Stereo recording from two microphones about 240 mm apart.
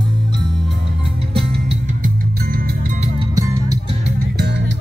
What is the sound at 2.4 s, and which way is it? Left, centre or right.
Music, right.